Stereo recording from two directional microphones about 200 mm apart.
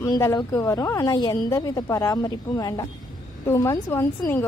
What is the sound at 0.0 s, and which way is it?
A woman's voice, 15° left (ahead or behind).